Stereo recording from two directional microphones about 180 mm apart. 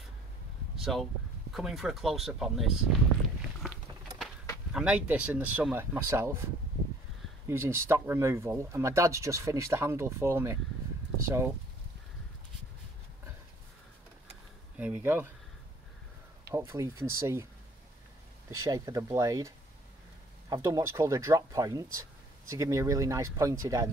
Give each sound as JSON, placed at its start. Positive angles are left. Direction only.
{"t": 0.7, "sound": "a sound", "side_deg": 0}
{"t": 1.5, "sound": "speech", "side_deg": 0}
{"t": 4.7, "sound": "speech", "side_deg": -5}
{"t": 14.8, "sound": "speech", "side_deg": -10}
{"t": 16.5, "sound": "speech", "side_deg": -15}
{"t": 18.5, "sound": "speech", "side_deg": -20}